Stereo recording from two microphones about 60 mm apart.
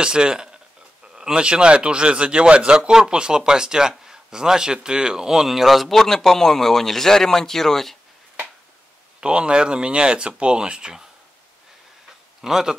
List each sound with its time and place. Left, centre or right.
0.0 s a man's voice: centre
9.2 s a man's voice: centre
12.4 s speech: centre